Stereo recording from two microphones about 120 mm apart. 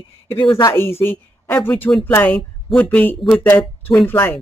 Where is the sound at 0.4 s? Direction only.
45° left (ahead or behind).